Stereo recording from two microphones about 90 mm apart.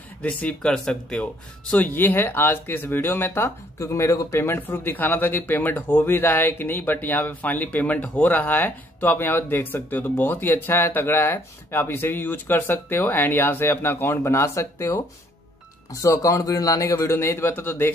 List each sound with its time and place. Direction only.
0.2 s a man's voice: 15° left (ahead or behind)